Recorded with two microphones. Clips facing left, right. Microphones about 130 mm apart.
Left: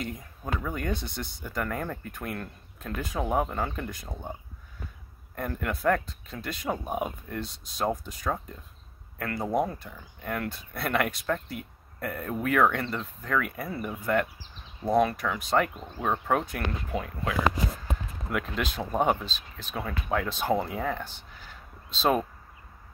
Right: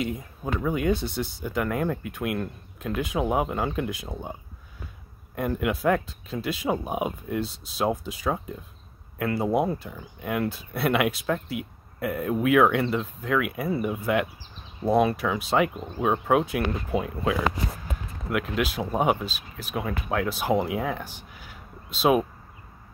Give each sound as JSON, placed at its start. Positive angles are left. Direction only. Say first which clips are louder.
{"t": 0.4, "sound": "speech", "louder": "right 6 dB", "side_deg": -10}
{"t": 7.4, "sound": "speech", "louder": "right 6 dB", "side_deg": -30}
{"t": 7.7, "sound": "speech", "louder": "right 3 dB", "side_deg": -5}
{"t": 18.3, "sound": "speech", "louder": "right 4 dB", "side_deg": -5}